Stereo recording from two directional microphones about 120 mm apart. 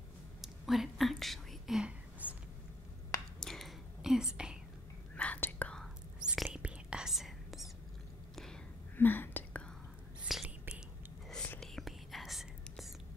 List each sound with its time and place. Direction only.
0.4 s whispering: centre (ahead or behind)
3.3 s whispering: centre (ahead or behind)
5.1 s whispering: 10° left (ahead or behind)
6.2 s whispering: 5° right (ahead or behind)
8.9 s whispering: 15° left (ahead or behind)
10.2 s whispering: 5° right (ahead or behind)